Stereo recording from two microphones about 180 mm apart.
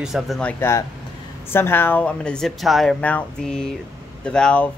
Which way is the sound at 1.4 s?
10° left (ahead or behind).